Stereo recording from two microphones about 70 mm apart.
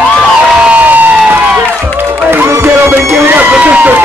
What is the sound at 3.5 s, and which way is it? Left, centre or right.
Run, centre.